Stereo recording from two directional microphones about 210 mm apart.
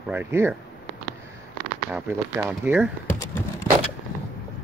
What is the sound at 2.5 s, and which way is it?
Speech, 5° right (ahead or behind).